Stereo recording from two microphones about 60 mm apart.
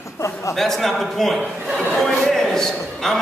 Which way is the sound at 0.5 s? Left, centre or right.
Centre.